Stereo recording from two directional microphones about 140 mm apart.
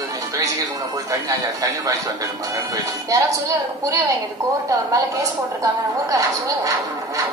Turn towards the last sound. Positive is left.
turn(degrees=-25)  # may be behind; listen again after turning